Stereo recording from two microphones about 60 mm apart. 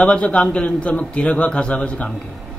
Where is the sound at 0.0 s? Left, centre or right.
Centre.